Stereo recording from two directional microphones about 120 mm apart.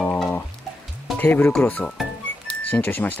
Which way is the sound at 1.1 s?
15° left (ahead or behind).